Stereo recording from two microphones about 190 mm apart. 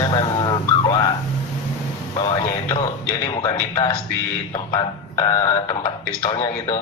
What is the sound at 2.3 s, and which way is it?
A man's voice, 25° left (ahead or behind).